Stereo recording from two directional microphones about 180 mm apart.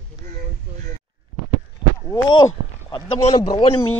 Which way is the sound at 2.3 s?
25° left (ahead or behind).